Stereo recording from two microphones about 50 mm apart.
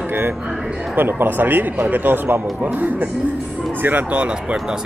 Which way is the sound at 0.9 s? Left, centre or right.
Right.